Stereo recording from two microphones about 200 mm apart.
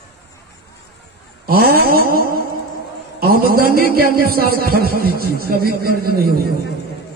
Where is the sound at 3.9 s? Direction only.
50° right (ahead or behind).